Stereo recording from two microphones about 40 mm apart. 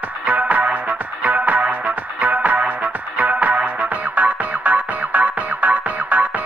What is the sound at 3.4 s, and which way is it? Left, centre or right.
Music, right.